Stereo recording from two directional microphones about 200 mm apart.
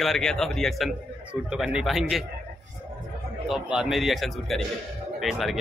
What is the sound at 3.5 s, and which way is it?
A man's voice, centre (ahead or behind).